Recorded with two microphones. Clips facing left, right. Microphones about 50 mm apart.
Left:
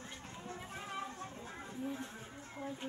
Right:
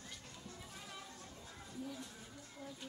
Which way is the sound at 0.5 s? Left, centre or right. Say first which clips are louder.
Left 8 dB; left.